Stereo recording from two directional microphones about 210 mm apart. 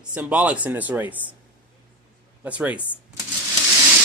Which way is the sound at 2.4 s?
5° right (ahead or behind).